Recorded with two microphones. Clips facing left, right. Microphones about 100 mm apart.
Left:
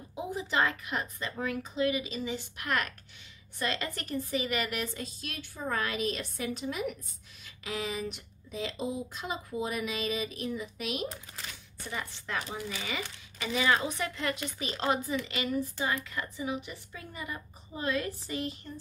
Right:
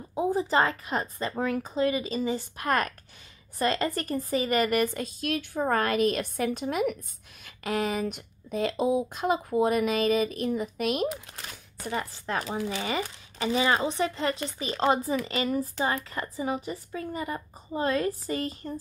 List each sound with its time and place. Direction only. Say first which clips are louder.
0.1 s a woman's voice: right 8 dB; 35° right (ahead or behind)